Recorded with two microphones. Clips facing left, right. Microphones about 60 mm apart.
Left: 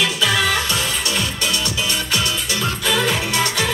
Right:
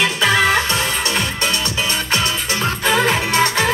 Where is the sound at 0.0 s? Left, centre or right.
Right.